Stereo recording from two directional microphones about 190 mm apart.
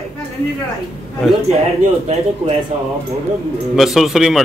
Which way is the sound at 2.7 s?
35° right (ahead or behind).